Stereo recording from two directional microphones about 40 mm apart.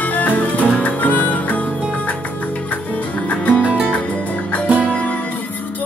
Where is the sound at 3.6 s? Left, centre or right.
Right.